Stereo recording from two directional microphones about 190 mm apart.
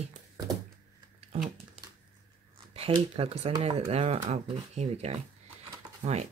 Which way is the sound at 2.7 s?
30° right (ahead or behind).